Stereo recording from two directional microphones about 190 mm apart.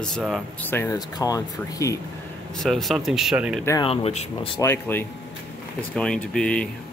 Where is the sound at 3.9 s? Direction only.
35° left (ahead or behind).